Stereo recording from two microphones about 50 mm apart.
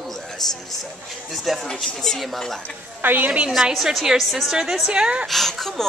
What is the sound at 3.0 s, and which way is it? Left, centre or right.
Speech, right.